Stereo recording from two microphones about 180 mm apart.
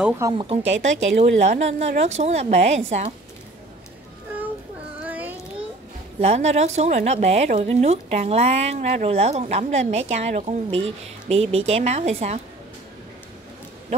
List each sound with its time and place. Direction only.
0.2 s speech: 25° right (ahead or behind)
0.8 s a woman's voice: 40° right (ahead or behind)
5.0 s a sound: 10° right (ahead or behind)
6.1 s a woman's voice: 35° right (ahead or behind)